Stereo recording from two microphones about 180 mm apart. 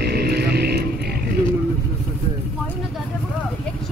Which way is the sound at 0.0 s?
65° right (ahead or behind).